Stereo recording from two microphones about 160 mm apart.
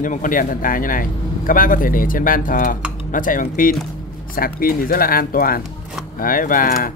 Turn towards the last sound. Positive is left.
turn(degrees=60)  # may be behind; listen again after turning